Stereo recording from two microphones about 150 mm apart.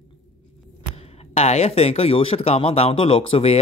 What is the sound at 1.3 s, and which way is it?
Speech, 45° left (ahead or behind).